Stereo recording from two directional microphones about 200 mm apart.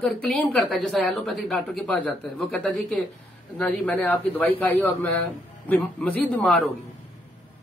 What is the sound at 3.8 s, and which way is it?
A man's voice, 10° left (ahead or behind).